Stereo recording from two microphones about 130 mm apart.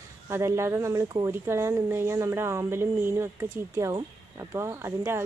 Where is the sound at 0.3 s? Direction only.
20° right (ahead or behind).